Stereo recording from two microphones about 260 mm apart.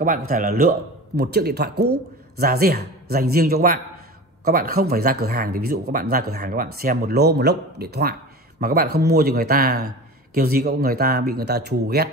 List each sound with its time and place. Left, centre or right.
0.3 s speech: right